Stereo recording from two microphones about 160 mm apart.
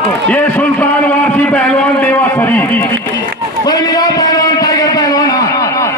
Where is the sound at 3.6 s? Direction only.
25° left (ahead or behind).